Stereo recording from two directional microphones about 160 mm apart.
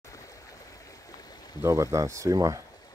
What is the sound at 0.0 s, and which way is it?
Stream, 20° left (ahead or behind).